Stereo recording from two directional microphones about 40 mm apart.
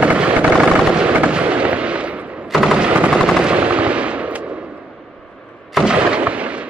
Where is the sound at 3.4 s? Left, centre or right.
Right.